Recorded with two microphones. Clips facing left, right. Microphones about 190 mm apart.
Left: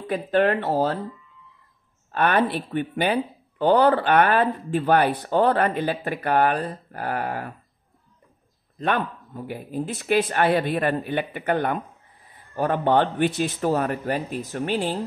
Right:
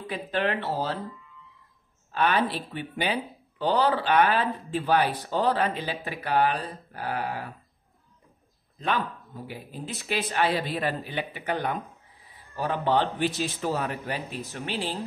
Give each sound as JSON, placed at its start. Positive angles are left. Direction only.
{"t": 0.0, "sound": "speech", "side_deg": 50}
{"t": 2.1, "sound": "speech", "side_deg": 55}
{"t": 8.7, "sound": "speech", "side_deg": 55}